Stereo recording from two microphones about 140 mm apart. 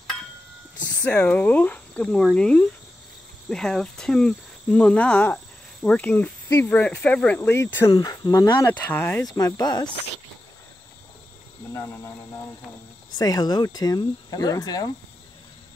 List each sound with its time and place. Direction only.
1.0 s cricket: 10° left (ahead or behind)
8.7 s cricket: 15° left (ahead or behind)
9.2 s speech: 25° left (ahead or behind)
11.7 s speech: 20° left (ahead or behind)
13.2 s speech: 30° left (ahead or behind)